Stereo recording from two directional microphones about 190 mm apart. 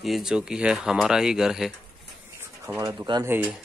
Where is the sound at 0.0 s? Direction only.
Centre (ahead or behind).